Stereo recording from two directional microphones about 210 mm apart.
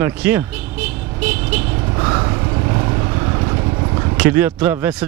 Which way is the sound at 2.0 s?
15° right (ahead or behind).